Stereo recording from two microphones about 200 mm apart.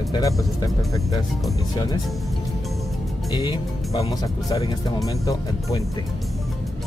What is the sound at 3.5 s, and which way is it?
Speech, 15° left (ahead or behind).